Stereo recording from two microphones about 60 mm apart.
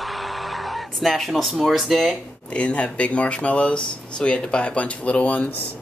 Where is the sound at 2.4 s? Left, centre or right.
Centre.